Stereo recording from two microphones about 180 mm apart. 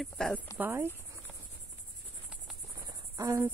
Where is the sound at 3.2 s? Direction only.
15° right (ahead or behind).